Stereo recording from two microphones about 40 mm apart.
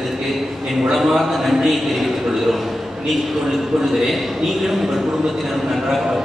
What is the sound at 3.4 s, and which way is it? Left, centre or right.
A man's voice, centre.